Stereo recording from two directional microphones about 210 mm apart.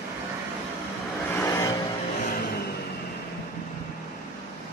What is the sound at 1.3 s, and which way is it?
Vehicle, 15° left (ahead or behind).